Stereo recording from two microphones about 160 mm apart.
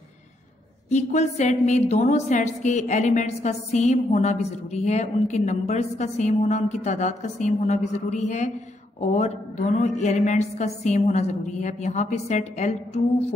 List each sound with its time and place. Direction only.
0.8 s a woman's voice: 45° left (ahead or behind)